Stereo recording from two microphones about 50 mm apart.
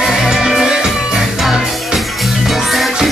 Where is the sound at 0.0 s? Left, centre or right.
Centre.